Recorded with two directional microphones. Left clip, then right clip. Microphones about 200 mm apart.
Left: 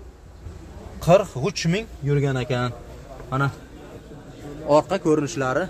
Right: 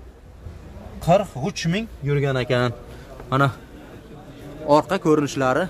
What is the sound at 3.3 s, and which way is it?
Speech, 50° right (ahead or behind).